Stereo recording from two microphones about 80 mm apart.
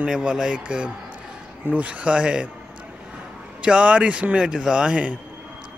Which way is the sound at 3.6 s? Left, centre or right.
Centre.